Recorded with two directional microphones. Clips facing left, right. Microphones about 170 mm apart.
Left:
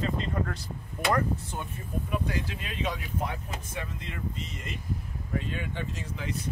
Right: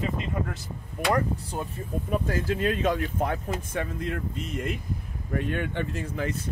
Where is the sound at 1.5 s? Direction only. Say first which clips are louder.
Right 5 dB; 30° right (ahead or behind).